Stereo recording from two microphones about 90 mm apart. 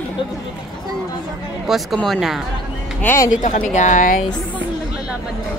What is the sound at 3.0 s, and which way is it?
Speech, 35° left (ahead or behind).